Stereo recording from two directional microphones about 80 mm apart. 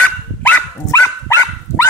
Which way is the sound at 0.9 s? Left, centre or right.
Left.